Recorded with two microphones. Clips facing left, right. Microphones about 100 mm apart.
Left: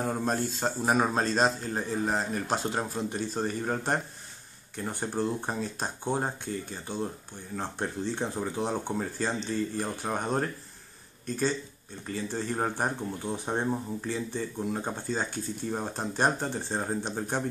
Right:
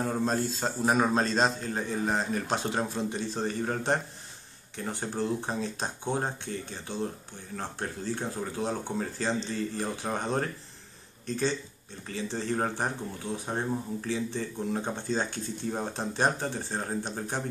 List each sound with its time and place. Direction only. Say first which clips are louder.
0.0 s speech: right 1 dB; 5° left (ahead or behind)